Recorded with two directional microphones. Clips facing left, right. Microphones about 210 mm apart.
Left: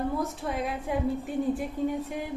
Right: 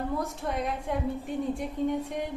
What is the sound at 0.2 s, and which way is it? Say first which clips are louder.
A woman's voice: left 1 dB; centre (ahead or behind).